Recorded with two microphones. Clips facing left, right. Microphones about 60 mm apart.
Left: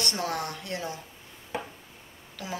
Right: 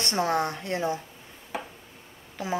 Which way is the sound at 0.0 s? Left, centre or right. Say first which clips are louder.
Right 5 dB; right.